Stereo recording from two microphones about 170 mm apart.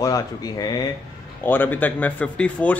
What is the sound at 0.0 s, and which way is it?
Speech, 20° left (ahead or behind).